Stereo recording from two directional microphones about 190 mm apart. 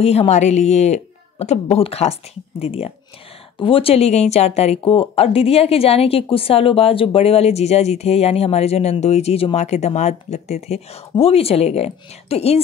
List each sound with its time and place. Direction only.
0.0 s speech: 35° left (ahead or behind)